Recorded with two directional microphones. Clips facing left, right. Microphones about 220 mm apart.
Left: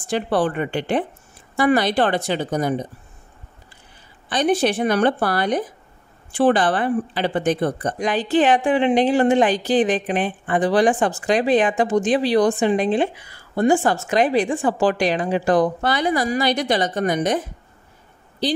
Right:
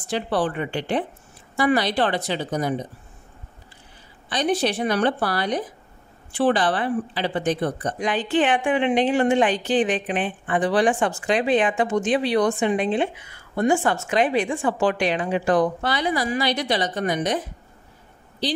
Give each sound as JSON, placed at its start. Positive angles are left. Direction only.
{"t": 0.1, "sound": "a woman's voice", "side_deg": 50}
{"t": 4.3, "sound": "a woman's voice", "side_deg": 50}